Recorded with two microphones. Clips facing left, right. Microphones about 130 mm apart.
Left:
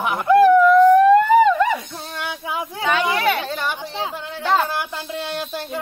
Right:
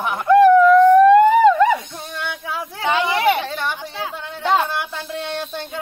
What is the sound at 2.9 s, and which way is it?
Speech, 20° right (ahead or behind).